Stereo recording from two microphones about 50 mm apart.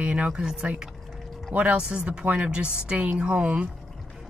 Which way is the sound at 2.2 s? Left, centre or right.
Right.